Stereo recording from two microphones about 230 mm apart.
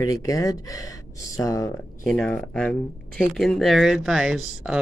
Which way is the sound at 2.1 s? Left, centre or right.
Centre.